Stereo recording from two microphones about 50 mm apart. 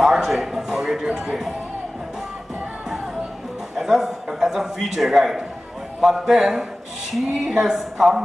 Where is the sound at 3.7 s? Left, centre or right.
Centre.